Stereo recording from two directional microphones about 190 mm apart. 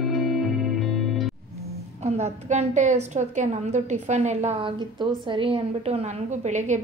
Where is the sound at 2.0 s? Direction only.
35° right (ahead or behind).